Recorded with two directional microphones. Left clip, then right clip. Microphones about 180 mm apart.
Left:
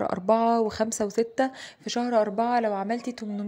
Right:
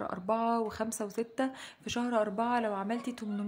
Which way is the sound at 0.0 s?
25° left (ahead or behind).